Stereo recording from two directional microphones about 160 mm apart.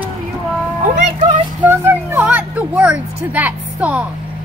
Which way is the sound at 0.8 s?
50° right (ahead or behind).